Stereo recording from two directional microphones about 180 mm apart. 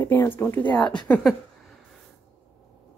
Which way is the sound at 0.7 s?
25° left (ahead or behind).